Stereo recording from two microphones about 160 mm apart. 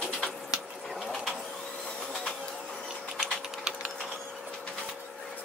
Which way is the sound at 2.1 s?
5° left (ahead or behind).